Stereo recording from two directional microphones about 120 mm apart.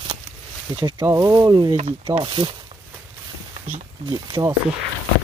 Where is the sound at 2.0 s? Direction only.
45° right (ahead or behind).